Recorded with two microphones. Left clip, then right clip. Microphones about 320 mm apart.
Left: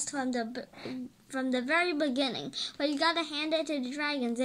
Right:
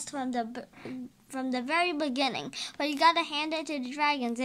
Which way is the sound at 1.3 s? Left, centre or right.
Centre.